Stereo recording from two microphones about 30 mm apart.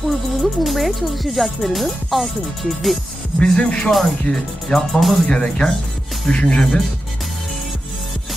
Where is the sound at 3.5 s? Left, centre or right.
Left.